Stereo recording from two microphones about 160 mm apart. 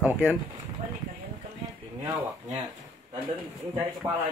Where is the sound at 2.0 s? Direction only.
20° right (ahead or behind).